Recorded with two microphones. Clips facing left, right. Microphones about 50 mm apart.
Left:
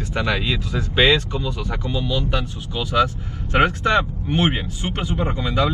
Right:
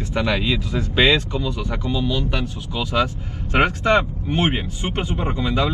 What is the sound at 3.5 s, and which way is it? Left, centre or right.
Speech, right.